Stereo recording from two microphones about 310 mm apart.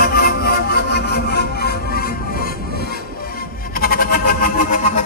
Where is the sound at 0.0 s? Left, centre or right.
Left.